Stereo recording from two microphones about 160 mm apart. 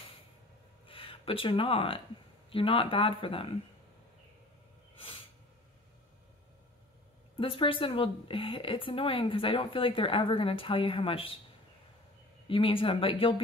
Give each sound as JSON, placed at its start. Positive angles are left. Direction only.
{"t": 0.8, "sound": "a sound", "side_deg": 35}
{"t": 2.5, "sound": "speech", "side_deg": 35}
{"t": 7.3, "sound": "speech", "side_deg": 35}
{"t": 12.4, "sound": "speech", "side_deg": 35}